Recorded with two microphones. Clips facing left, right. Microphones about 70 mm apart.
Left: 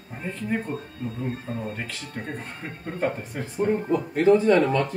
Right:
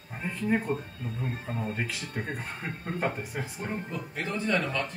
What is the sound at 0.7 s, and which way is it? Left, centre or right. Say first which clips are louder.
Speech: left 1 dB; centre.